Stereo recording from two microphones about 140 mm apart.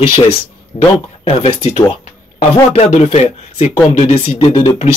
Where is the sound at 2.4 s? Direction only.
50° left (ahead or behind).